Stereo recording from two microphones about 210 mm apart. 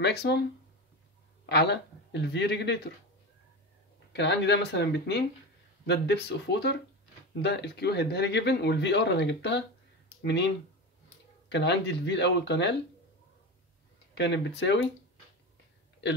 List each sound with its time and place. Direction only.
0.0 s speech: 50° left (ahead or behind)
1.4 s speech: 50° left (ahead or behind)
4.1 s speech: 55° left (ahead or behind)
14.1 s speech: 55° left (ahead or behind)